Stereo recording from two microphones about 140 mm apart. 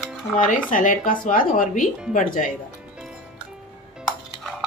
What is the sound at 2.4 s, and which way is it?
Speech, 65° left (ahead or behind).